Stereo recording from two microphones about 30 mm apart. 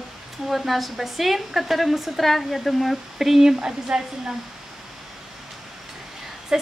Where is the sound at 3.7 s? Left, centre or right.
Right.